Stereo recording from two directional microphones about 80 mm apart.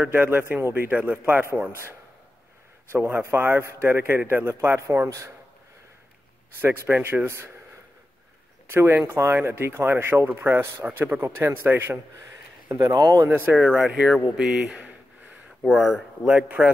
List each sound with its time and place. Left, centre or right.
0.0 s speech: right
2.9 s speech: right
6.6 s speech: right
8.7 s speech: right
12.2 s a sound: right
12.9 s speech: right
13.2 s speech: right
13.6 s speech: centre
16.3 s speech: centre